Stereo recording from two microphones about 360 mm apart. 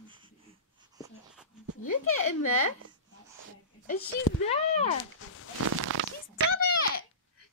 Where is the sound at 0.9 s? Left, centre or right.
Centre.